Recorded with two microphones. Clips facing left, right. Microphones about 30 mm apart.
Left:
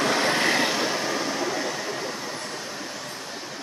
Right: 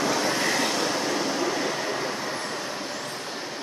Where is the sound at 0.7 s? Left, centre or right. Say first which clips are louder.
Even; centre.